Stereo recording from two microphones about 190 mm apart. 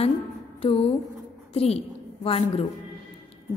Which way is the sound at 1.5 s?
30° left (ahead or behind).